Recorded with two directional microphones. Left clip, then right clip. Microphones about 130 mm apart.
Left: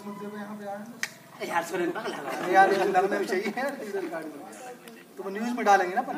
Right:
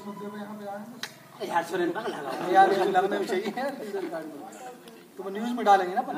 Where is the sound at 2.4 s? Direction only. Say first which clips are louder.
Even; 15° left (ahead or behind).